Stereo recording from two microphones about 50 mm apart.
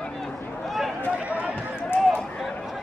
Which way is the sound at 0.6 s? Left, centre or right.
Centre.